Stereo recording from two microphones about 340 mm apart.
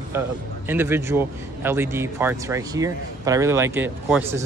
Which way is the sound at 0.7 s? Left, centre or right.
Centre.